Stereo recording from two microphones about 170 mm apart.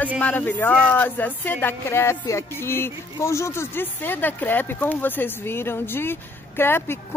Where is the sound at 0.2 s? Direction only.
10° left (ahead or behind).